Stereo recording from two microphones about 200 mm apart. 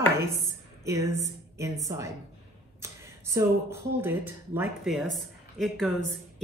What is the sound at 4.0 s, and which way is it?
Speech, 10° right (ahead or behind).